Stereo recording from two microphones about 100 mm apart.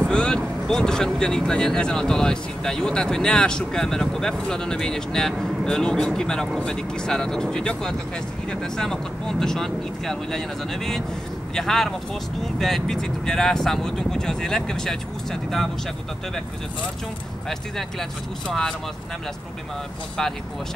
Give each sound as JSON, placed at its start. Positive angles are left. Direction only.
{"t": 0.0, "sound": "speech", "side_deg": 10}
{"t": 18.5, "sound": "speech", "side_deg": 5}